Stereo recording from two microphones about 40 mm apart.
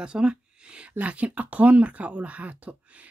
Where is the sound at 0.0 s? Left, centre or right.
Right.